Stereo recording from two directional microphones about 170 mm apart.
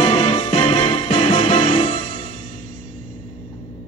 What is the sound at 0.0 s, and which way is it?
Music, 40° left (ahead or behind).